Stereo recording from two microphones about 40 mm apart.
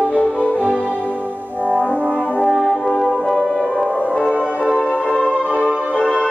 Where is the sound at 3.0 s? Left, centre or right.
Centre.